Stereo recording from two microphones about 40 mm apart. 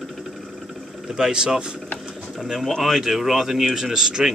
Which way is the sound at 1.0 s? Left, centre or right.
Centre.